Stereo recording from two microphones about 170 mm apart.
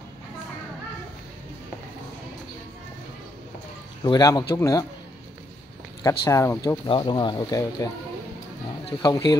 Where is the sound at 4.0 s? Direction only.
20° left (ahead or behind).